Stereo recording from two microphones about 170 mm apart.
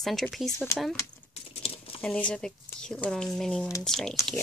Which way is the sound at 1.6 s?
35° left (ahead or behind).